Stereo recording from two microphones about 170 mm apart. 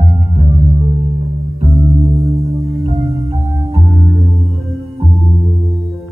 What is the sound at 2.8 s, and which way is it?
Music, 35° right (ahead or behind).